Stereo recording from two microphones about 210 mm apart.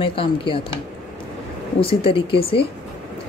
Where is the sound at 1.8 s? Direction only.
25° left (ahead or behind).